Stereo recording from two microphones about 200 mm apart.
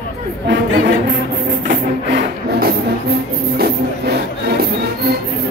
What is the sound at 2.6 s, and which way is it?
Music, 50° right (ahead or behind).